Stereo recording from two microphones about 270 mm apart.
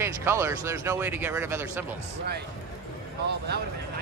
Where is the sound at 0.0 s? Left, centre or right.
Centre.